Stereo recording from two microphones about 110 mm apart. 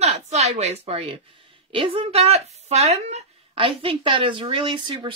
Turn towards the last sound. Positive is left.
turn(degrees=-45)  # may be behind; listen again after turning